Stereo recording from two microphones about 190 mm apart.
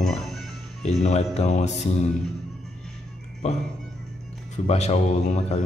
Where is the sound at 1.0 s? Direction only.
35° left (ahead or behind).